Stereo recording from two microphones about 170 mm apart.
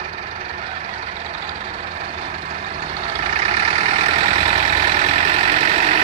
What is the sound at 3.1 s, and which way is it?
Vehicle, 40° right (ahead or behind).